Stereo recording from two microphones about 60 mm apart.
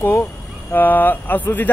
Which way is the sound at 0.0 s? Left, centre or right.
Left.